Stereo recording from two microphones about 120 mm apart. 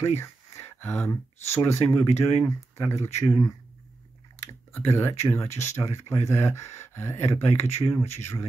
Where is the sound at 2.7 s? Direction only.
25° left (ahead or behind).